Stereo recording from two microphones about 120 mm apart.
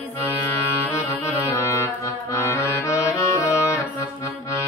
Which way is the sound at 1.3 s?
25° left (ahead or behind).